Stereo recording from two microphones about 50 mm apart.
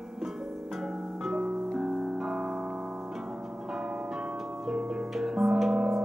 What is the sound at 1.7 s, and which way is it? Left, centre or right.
Keyboard, centre.